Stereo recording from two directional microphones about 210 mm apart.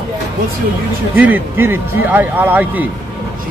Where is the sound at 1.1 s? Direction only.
10° right (ahead or behind).